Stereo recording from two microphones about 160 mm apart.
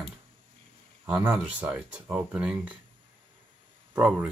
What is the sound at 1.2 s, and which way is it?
Speech, 10° right (ahead or behind).